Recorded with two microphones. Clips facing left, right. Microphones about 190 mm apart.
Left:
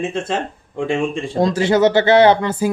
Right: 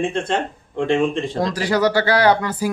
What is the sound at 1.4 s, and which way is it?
Speech, 25° left (ahead or behind).